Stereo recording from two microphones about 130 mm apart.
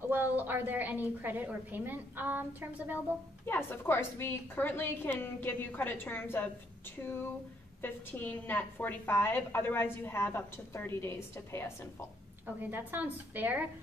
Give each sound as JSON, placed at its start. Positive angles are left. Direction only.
{"t": 0.1, "sound": "a woman's voice", "side_deg": -15}
{"t": 3.4, "sound": "a woman's voice", "side_deg": 15}
{"t": 7.8, "sound": "a woman's voice", "side_deg": 15}
{"t": 12.6, "sound": "a woman's voice", "side_deg": -15}